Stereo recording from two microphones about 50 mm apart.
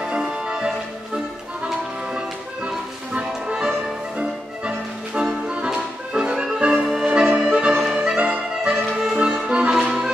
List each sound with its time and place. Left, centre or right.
0.0 s music: centre
2.1 s music: right
6.7 s music: centre
7.1 s music: centre